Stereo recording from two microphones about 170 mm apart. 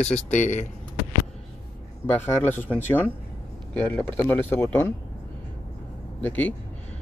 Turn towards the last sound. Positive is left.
turn(degrees=10)  # may be behind; listen again after turning